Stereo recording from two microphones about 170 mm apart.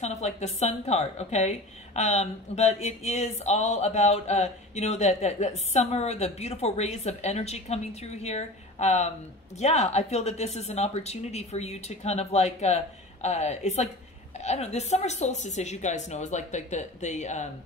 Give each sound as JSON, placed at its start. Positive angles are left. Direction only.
{"t": 0.0, "sound": "a woman's voice", "side_deg": 40}